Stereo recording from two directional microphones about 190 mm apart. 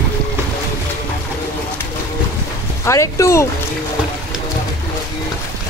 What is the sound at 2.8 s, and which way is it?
Speech, 15° left (ahead or behind).